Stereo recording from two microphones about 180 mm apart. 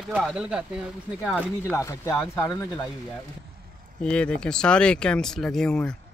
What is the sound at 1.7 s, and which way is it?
Speech, 15° left (ahead or behind).